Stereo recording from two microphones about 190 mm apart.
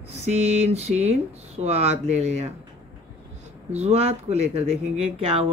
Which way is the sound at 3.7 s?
35° right (ahead or behind).